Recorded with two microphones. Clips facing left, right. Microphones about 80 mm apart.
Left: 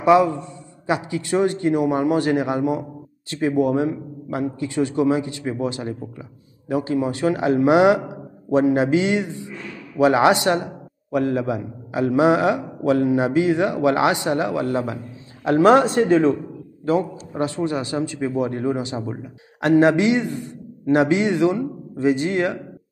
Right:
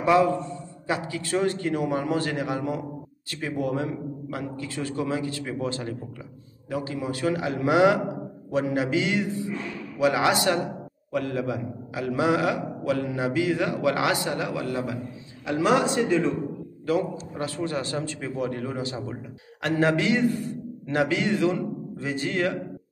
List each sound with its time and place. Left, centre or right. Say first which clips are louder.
0.0 s a man's voice: left 5 dB; centre
15.4 s a man's voice: left 8 dB; left
16.8 s a man's voice: left 4 dB; left